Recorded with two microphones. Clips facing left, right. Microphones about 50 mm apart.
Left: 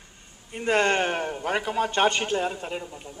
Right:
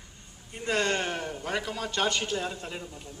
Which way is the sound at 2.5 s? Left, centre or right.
Centre.